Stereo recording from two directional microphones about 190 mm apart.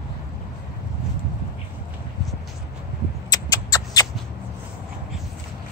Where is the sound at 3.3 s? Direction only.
20° left (ahead or behind).